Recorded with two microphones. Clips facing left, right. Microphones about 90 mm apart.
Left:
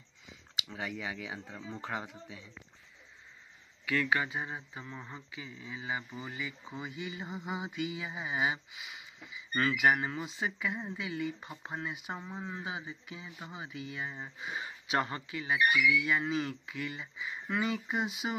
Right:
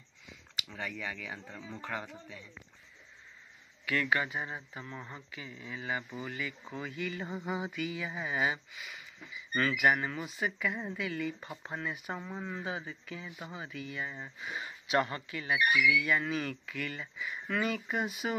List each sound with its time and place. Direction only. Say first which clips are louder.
0.6 s speech: left 1 dB; 20° left (ahead or behind)
4.1 s speech: even; 25° left (ahead or behind)
5.4 s speech: even; 45° right (ahead or behind)
5.7 s speech: right 1 dB; 20° left (ahead or behind)